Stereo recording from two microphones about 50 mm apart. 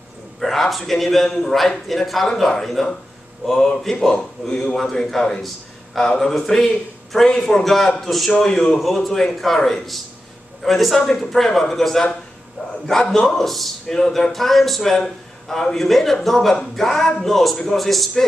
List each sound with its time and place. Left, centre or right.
0.4 s a man's voice: centre